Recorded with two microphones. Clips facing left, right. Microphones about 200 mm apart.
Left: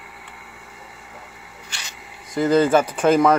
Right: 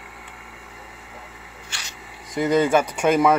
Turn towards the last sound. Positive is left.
turn(degrees=0)  # may be behind; listen again after turning